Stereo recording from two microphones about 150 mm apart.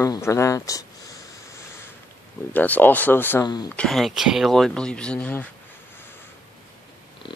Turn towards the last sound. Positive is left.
turn(degrees=10)  # may be behind; listen again after turning